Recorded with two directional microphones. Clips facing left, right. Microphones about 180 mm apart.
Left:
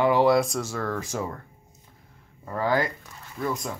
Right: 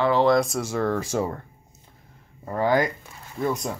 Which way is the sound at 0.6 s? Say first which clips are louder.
Right 5 dB; 25° right (ahead or behind).